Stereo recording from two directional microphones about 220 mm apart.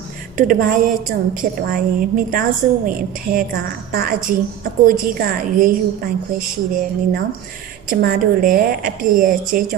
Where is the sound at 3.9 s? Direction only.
40° right (ahead or behind).